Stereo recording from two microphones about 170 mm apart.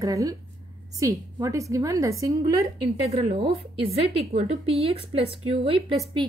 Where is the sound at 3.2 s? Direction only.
35° right (ahead or behind).